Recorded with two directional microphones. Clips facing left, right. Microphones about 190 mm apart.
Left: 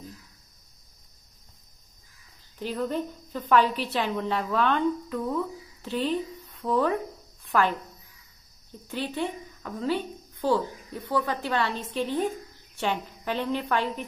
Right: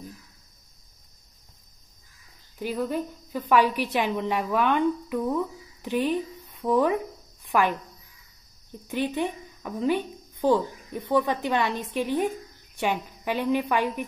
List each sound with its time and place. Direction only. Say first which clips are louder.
2.6 s a woman's voice: right 1 dB; 10° right (ahead or behind)
8.8 s a woman's voice: right 3 dB; 15° right (ahead or behind)